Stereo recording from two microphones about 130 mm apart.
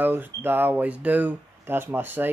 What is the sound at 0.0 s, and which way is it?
Speech, 15° right (ahead or behind).